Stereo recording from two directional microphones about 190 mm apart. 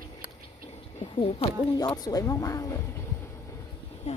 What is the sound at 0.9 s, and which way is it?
Speech, 35° left (ahead or behind).